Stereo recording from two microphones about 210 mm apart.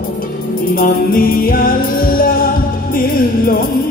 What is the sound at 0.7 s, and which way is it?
Music, 40° left (ahead or behind).